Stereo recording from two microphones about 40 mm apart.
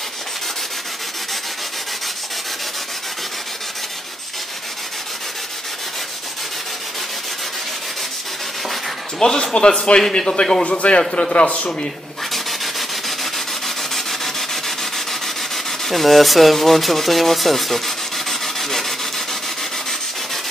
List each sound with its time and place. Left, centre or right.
9.2 s a man's voice: centre
12.3 s rub: centre